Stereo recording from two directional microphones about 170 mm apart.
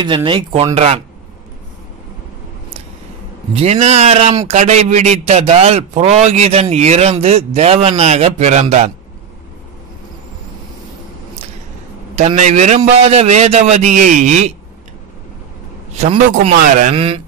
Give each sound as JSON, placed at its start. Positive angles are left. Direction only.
{"t": 0.0, "sound": "a man's voice", "side_deg": -30}
{"t": 3.5, "sound": "a man's voice", "side_deg": -40}
{"t": 12.2, "sound": "a man's voice", "side_deg": -45}
{"t": 15.9, "sound": "a man's voice", "side_deg": -40}
{"t": 16.9, "sound": "a man's voice", "side_deg": -35}